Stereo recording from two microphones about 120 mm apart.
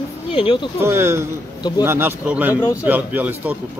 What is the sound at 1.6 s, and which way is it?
Speech, 35° left (ahead or behind).